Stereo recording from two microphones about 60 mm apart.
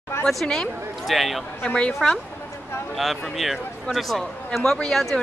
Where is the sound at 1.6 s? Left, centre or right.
Centre.